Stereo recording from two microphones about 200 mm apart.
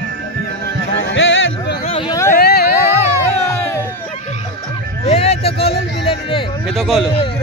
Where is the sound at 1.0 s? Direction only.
70° left (ahead or behind).